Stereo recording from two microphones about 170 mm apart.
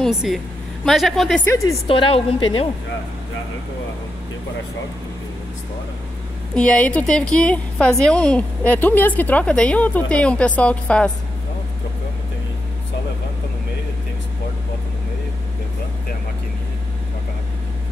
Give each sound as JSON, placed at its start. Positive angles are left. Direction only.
{"t": 0.0, "sound": "a woman's voice", "side_deg": 0}
{"t": 1.9, "sound": "a woman's voice", "side_deg": 35}
{"t": 6.5, "sound": "a woman's voice", "side_deg": 5}